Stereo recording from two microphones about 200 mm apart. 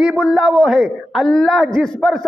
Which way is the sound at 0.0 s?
Centre (ahead or behind).